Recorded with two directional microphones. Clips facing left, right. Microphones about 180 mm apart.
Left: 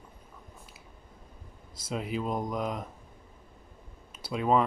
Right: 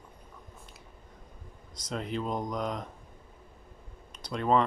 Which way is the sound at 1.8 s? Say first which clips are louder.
Left 1 dB; 5° left (ahead or behind).